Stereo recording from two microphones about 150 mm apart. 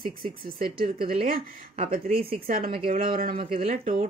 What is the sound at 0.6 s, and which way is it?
Speech, 80° right.